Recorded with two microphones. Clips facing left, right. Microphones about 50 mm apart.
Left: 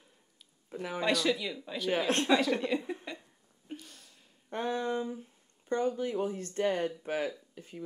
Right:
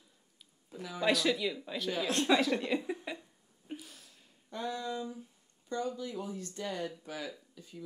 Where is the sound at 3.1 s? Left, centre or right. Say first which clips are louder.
Right 1 dB; centre.